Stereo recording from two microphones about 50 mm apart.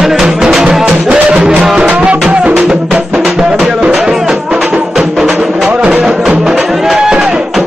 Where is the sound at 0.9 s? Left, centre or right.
Right.